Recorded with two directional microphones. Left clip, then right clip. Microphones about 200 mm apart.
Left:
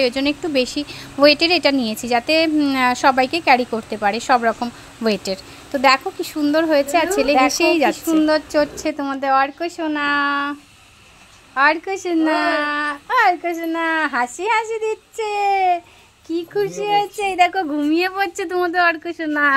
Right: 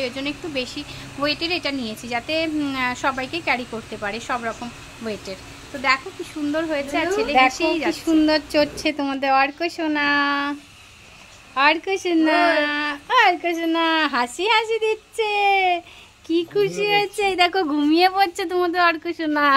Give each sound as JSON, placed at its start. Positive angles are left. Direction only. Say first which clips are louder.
{"t": 0.0, "sound": "a woman's voice", "louder": "left 8 dB", "side_deg": 30}
{"t": 7.9, "sound": "speech", "louder": "left 2 dB", "side_deg": 10}
{"t": 11.5, "sound": "speech", "louder": "left 2 dB", "side_deg": 10}